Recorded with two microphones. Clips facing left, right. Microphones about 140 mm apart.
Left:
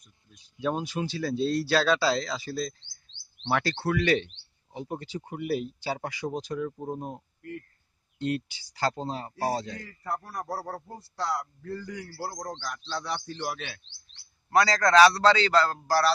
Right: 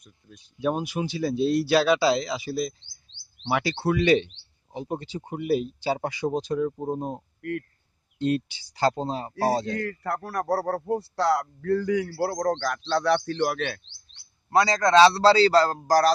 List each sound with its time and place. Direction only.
0.6 s speech: 15° right (ahead or behind)
3.8 s speech: 20° right (ahead or behind)
8.5 s speech: 25° right (ahead or behind)
9.7 s a man's voice: 75° right (ahead or behind)
14.5 s a man's voice: 25° right (ahead or behind); by 16.1 s 40° right (ahead or behind)